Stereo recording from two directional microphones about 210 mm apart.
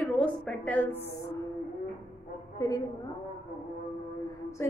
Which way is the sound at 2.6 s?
15° left (ahead or behind).